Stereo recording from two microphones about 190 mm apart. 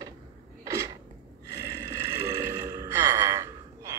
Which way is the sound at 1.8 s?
15° right (ahead or behind).